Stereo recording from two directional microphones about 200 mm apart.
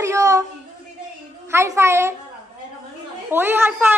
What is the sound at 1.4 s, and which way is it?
Speech, 15° right (ahead or behind).